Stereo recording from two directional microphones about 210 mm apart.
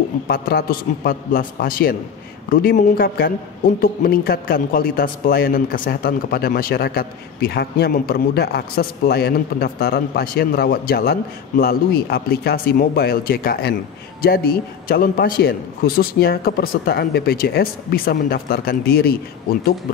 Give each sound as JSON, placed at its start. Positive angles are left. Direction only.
{"t": 0.3, "sound": "a man's voice", "side_deg": 45}